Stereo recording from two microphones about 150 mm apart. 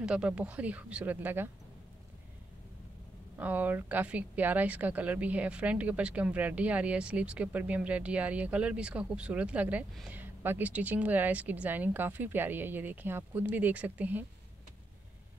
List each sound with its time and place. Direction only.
0.0 s speech: 5° right (ahead or behind)
3.3 s speech: 10° right (ahead or behind)